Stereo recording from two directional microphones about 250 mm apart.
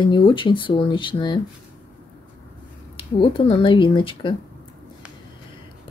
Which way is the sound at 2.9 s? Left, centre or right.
Left.